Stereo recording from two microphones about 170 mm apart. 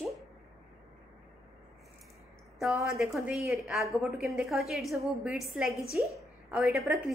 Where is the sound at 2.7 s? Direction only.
15° right (ahead or behind).